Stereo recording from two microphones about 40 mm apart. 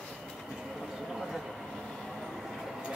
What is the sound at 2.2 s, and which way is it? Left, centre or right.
Train, centre.